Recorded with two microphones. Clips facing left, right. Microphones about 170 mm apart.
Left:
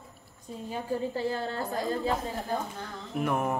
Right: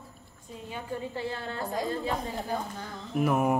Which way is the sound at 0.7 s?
35° left (ahead or behind).